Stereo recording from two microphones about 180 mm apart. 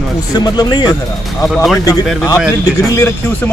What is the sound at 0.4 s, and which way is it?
Speech, 20° left (ahead or behind).